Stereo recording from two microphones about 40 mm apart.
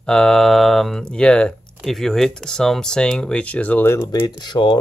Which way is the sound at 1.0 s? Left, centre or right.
Left.